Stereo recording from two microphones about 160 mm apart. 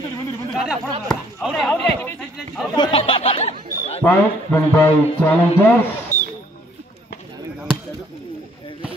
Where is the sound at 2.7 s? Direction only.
30° left (ahead or behind).